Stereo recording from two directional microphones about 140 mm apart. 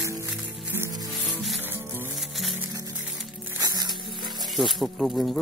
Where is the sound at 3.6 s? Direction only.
30° right (ahead or behind).